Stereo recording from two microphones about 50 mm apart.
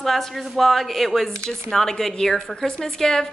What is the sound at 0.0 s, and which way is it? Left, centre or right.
A woman's voice, centre.